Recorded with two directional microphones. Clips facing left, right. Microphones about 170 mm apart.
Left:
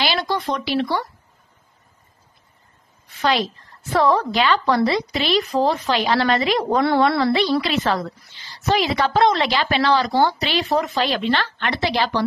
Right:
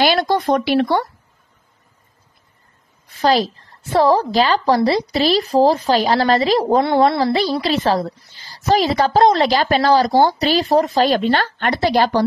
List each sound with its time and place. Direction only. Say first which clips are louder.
0.0 s speech: right 6 dB; 45° right (ahead or behind)
3.2 s a woman's voice: right 5 dB; 35° right (ahead or behind)